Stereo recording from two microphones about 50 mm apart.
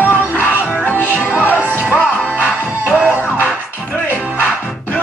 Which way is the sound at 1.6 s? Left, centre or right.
Right.